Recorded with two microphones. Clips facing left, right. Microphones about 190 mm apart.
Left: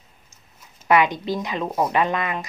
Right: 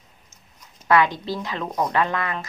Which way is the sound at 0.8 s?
15° left (ahead or behind).